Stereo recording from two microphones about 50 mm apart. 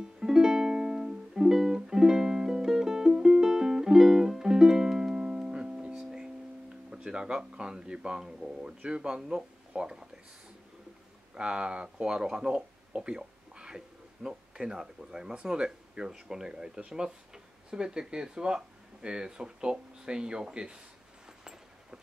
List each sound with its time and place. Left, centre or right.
0.0 s music: centre
6.9 s speech: centre
11.3 s speech: centre